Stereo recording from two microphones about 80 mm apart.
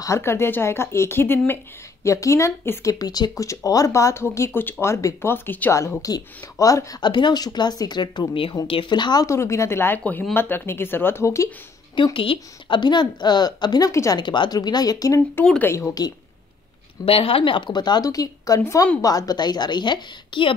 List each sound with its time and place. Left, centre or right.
0.0 s speech: left
2.0 s speech: left
4.6 s speech: left
5.7 s speech: left
7.0 s a woman's voice: left
9.2 s speech: left
11.9 s a woman's voice: left
14.1 s a woman's voice: left
15.6 s speech: left
17.0 s speech: left
17.5 s a woman's voice: left
18.6 s speech: left
18.9 s a woman's voice: left